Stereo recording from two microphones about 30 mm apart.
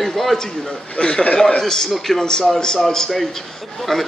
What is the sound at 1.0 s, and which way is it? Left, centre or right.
Speech, left.